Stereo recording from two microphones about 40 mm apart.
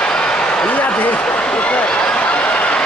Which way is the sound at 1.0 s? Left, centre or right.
Left.